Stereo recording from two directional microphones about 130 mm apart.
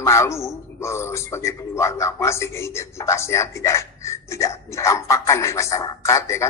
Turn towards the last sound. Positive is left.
turn(degrees=20)  # may be behind; listen again after turning